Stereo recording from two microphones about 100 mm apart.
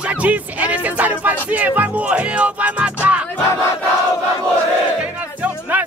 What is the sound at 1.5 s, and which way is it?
Speech, 15° right (ahead or behind).